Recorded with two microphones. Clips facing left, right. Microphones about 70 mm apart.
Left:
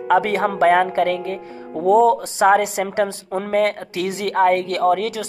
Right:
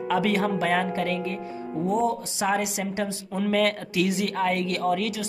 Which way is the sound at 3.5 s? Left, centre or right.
Left.